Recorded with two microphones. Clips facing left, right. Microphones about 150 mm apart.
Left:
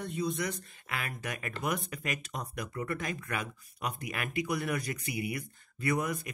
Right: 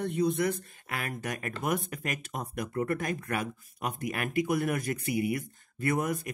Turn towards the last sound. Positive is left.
turn(degrees=-45)  # may be behind; listen again after turning